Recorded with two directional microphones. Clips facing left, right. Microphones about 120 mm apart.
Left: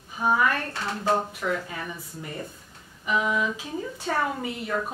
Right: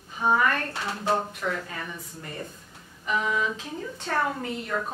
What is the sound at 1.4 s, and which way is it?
Speech, 5° left (ahead or behind).